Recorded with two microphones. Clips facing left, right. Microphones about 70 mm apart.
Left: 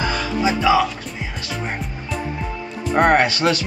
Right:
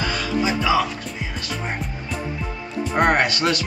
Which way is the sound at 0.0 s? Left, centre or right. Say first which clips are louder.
Left 1 dB; centre.